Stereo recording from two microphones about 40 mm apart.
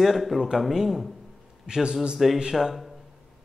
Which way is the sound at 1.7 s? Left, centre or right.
Centre.